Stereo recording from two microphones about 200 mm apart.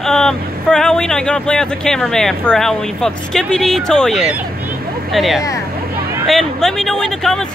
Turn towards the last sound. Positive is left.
turn(degrees=5)  # may be behind; listen again after turning